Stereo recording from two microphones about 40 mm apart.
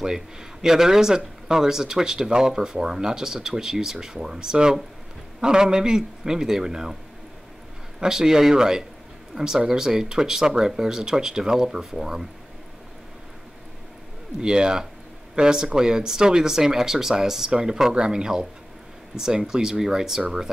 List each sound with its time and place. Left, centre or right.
0.0 s speech: centre
8.0 s speech: centre
14.4 s speech: right